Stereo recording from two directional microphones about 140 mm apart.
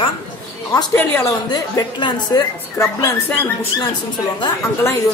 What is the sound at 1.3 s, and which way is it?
A woman's voice, 30° left (ahead or behind).